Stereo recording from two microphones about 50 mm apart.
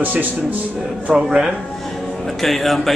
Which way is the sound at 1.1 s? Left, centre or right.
Centre.